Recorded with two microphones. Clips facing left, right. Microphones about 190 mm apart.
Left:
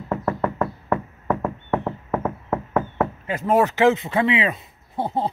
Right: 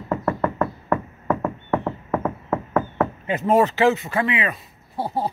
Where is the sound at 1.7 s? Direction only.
5° left (ahead or behind).